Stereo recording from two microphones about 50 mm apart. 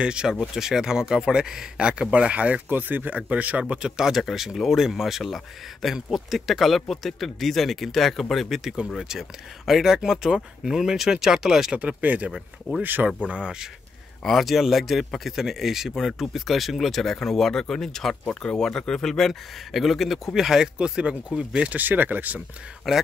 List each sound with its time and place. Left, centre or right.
0.0 s speech: centre
2.7 s speech: right
3.6 s speech: centre
12.0 s speech: right
12.3 s speech: centre
12.8 s speech: right
13.3 s speech: centre
14.2 s speech: centre; by 21.7 s right
21.7 s speech: right
22.9 s speech: centre